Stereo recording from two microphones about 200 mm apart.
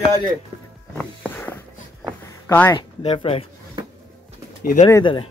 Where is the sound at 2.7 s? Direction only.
30° left (ahead or behind).